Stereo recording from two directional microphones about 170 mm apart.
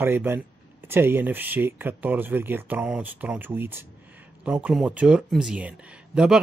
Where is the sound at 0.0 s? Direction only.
15° right (ahead or behind).